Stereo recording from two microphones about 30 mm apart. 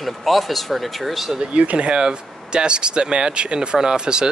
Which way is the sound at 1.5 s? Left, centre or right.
Right.